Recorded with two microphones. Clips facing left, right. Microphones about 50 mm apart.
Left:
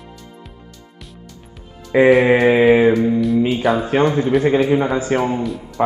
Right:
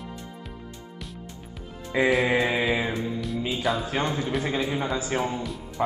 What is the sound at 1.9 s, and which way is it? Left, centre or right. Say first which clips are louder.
A man's voice: left 10 dB; left.